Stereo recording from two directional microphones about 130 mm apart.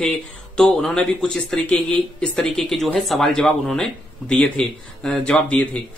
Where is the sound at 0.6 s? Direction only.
5° left (ahead or behind).